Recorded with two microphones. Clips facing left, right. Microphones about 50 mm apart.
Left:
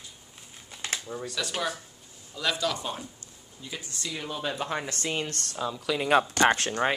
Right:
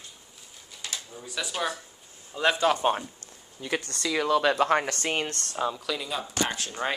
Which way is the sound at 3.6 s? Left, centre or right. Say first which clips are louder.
Right 8 dB; right.